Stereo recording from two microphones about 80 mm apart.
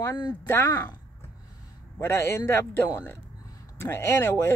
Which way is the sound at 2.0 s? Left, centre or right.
Left.